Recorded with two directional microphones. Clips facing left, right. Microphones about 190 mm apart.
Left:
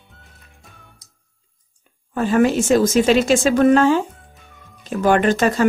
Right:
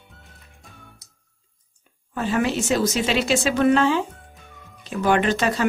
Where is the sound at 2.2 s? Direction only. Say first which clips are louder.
Left 6 dB; 45° left (ahead or behind).